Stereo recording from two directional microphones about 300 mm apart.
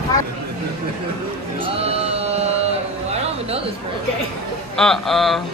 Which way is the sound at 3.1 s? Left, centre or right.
Right.